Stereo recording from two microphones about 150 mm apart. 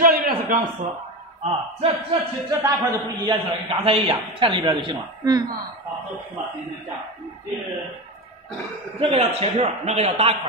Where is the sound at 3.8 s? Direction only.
40° right (ahead or behind).